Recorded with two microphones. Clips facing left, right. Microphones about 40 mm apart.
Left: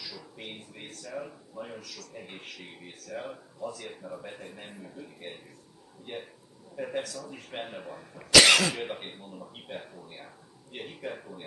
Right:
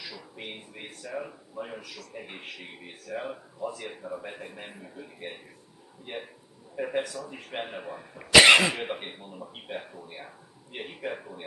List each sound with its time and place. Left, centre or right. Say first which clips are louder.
0.0 s a man's voice: right 2 dB; centre